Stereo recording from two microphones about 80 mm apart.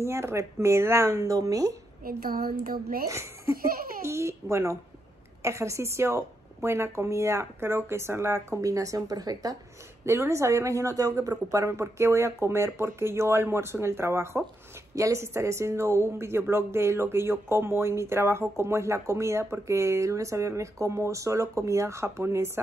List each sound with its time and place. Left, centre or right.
0.0 s speech: right
3.1 s speech: right
10.0 s speech: right